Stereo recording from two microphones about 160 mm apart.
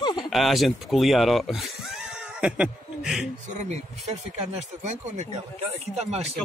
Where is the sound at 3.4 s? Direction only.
45° right (ahead or behind).